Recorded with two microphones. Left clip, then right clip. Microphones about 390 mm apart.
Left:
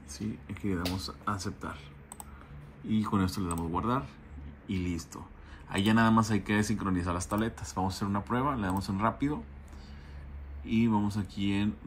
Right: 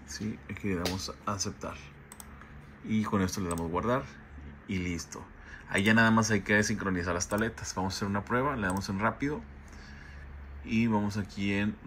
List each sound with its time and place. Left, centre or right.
0.1 s speech: centre
2.9 s speech: centre
10.6 s speech: centre